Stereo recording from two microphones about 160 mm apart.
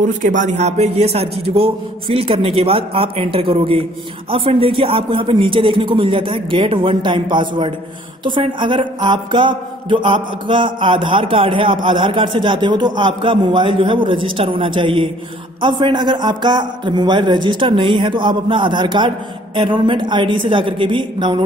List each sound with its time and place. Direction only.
0.0 s a man's voice: 50° right (ahead or behind); by 21.4 s 30° right (ahead or behind)